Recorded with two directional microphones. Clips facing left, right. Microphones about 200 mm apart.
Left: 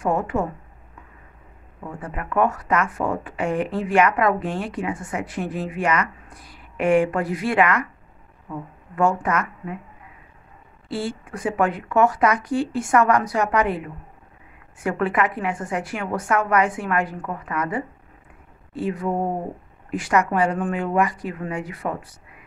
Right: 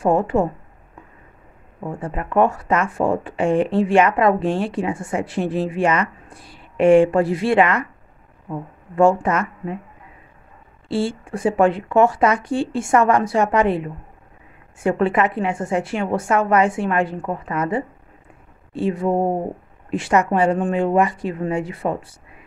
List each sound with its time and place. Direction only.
0.0 s speech: 30° right (ahead or behind)
1.8 s speech: 30° right (ahead or behind)
10.9 s speech: 30° right (ahead or behind)